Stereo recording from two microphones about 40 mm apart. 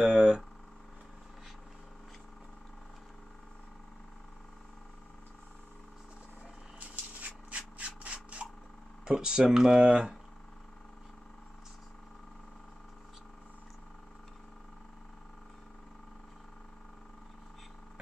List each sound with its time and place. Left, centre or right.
0.0 s speech: right
6.8 s a sound: right
9.1 s speech: centre